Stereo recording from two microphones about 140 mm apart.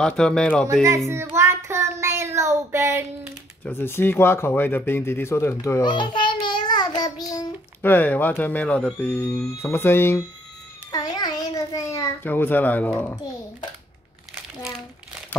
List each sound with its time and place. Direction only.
0.0 s speech: 5° left (ahead or behind)
0.8 s a child's voice: 20° right (ahead or behind)
3.6 s speech: 15° left (ahead or behind); by 6.3 s 35° left (ahead or behind)
6.4 s child singing: 30° left (ahead or behind)
7.8 s speech: 15° left (ahead or behind)
10.9 s a child's voice: 25° left (ahead or behind); by 13.2 s 10° left (ahead or behind)